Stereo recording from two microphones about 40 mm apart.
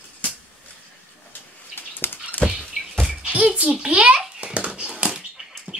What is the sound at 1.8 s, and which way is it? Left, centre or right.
Bird flight, left.